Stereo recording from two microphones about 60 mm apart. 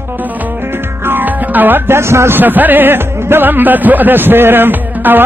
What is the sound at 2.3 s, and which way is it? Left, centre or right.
Speech, right.